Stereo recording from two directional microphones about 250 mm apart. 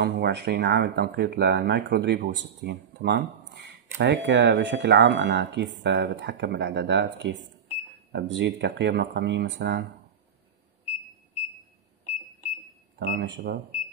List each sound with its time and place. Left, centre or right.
0.0 s speech: right
13.0 s speech: right